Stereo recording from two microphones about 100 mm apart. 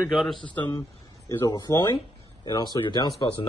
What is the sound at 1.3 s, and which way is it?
Speech, 30° left (ahead or behind).